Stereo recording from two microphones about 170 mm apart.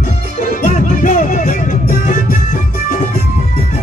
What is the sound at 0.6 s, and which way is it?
Music, 50° left (ahead or behind).